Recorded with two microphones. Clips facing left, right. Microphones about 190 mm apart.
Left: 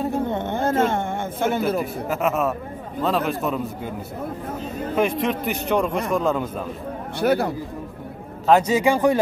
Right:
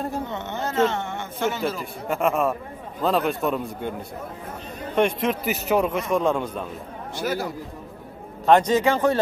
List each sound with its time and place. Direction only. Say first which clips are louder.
0.2 s speech: left 6 dB; 50° left (ahead or behind)
2.0 s a man's voice: right 3 dB; centre (ahead or behind)
4.9 s a man's voice: even; centre (ahead or behind)
7.2 s speech: left 7 dB; 60° left (ahead or behind)
8.5 s speech: left 1 dB; 5° left (ahead or behind)